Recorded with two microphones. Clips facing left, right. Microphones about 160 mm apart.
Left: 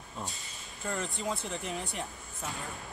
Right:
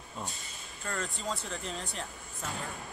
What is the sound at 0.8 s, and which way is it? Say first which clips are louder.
Speech: left 2 dB; 15° left (ahead or behind).